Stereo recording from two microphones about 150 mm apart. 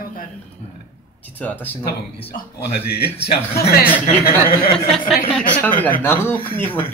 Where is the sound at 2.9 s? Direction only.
90° left.